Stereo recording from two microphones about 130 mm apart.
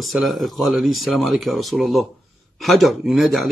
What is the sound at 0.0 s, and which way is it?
Speech, centre (ahead or behind).